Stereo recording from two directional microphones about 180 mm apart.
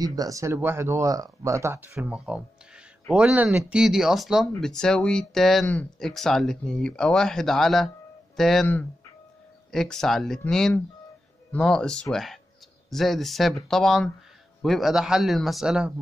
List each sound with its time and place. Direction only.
0.0 s speech: 20° right (ahead or behind); by 15.9 s 5° right (ahead or behind)